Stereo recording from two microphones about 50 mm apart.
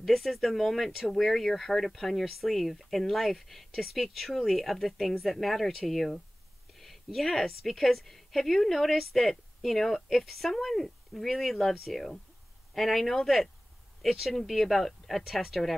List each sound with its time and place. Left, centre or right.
0.0 s speech: centre
6.7 s a sound: centre
7.6 s speech: centre